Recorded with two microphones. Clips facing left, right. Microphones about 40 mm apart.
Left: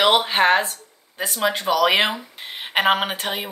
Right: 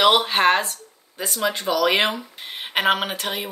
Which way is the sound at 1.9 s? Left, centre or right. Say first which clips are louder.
Left 1 dB; left.